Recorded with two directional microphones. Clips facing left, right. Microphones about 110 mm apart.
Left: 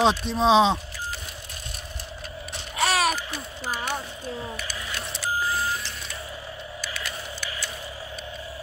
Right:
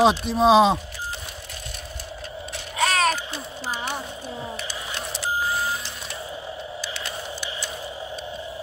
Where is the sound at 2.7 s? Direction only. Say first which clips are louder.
Right 1 dB; 5° left (ahead or behind).